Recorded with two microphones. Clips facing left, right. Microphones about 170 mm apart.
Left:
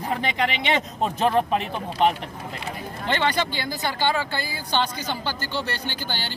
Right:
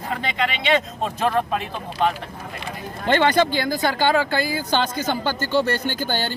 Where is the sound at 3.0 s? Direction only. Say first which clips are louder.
Right 6 dB; 45° right (ahead or behind).